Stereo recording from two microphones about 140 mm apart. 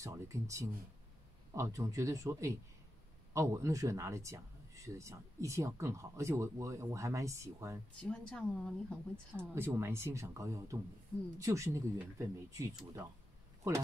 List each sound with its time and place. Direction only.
0.0 s speech: 20° right (ahead or behind)
8.0 s a woman's voice: 5° left (ahead or behind)
9.6 s speech: 20° right (ahead or behind)